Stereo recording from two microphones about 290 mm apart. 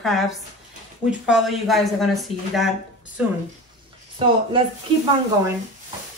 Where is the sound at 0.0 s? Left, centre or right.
Centre.